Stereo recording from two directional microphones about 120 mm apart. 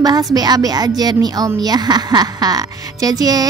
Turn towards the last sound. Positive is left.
turn(degrees=-30)  # may be behind; listen again after turning